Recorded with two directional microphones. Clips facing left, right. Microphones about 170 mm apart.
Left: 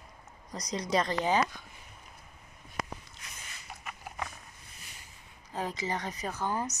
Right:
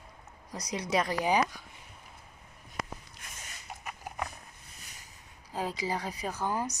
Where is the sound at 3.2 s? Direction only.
50° right (ahead or behind).